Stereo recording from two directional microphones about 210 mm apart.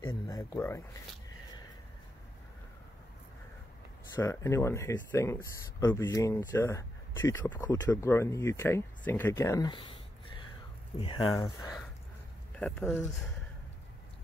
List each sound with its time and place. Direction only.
0.0 s a sound: 15° left (ahead or behind)
4.1 s speech: 15° left (ahead or behind)
12.5 s speech: 5° left (ahead or behind)